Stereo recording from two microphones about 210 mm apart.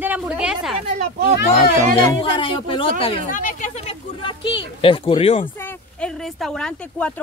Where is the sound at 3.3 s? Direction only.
40° left (ahead or behind).